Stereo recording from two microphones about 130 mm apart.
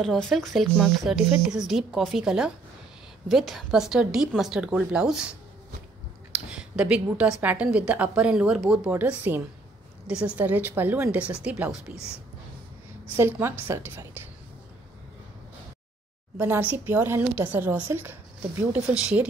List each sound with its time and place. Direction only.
0.0 s speech: 5° left (ahead or behind)
6.5 s a woman's voice: 5° right (ahead or behind)
13.1 s a woman's voice: 20° right (ahead or behind)
16.3 s a woman's voice: 15° right (ahead or behind)